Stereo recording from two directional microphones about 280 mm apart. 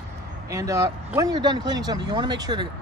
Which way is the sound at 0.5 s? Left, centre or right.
Centre.